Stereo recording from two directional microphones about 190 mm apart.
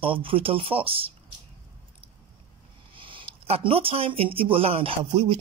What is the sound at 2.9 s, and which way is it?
Speech, 25° right (ahead or behind).